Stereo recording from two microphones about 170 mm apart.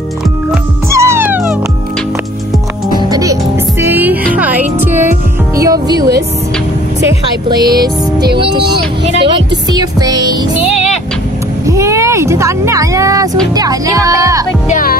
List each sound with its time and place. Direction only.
0.8 s music: 15° right (ahead or behind)
3.0 s music: 20° right (ahead or behind)
7.4 s speech: 25° right (ahead or behind)
9.3 s speech: 25° right (ahead or behind)
11.6 s a sound: 15° right (ahead or behind)
14.7 s music: 55° left (ahead or behind)